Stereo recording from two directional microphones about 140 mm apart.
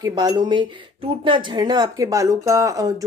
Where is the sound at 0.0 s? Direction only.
30° right (ahead or behind).